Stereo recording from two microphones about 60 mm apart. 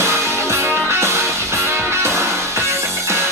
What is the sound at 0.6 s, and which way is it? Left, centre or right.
Music, right.